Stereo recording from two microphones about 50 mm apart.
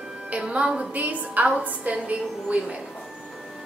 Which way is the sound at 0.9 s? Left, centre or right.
Right.